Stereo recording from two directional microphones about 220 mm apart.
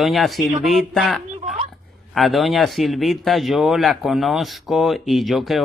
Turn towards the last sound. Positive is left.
turn(degrees=0)  # may be behind; listen again after turning